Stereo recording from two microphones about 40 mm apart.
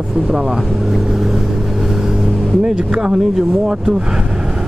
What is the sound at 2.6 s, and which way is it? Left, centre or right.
Speech, centre.